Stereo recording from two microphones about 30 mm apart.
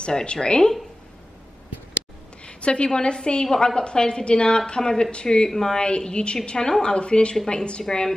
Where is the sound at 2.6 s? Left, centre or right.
Left.